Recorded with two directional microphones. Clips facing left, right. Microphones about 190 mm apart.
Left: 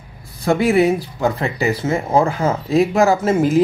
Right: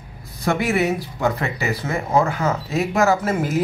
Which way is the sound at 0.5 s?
30° left (ahead or behind).